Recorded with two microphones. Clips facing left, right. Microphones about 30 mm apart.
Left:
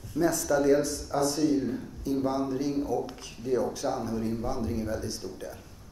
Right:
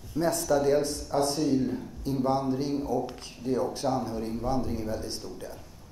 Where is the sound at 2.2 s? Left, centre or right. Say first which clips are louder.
Right 4 dB; right.